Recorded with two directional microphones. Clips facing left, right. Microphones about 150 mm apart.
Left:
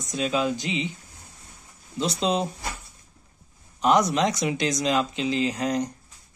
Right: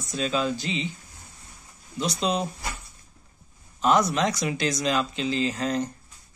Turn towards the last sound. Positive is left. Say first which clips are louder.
# left 1 dB
turn(degrees=15)  # may be behind; listen again after turning